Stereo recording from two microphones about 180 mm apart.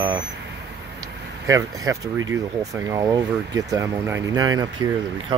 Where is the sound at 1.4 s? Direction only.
15° right (ahead or behind).